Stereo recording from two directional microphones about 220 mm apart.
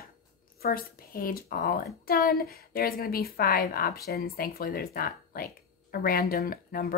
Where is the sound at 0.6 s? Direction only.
40° left (ahead or behind).